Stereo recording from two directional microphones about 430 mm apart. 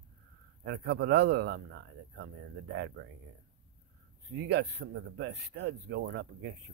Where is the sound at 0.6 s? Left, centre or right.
Right.